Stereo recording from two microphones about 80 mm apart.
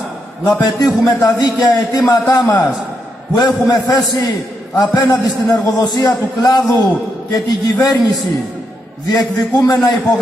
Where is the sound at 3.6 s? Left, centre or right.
Left.